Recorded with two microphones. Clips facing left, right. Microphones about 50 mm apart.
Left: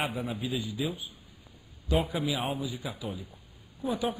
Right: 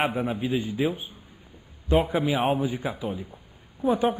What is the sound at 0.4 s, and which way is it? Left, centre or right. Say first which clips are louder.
A man's voice: right 7 dB; right.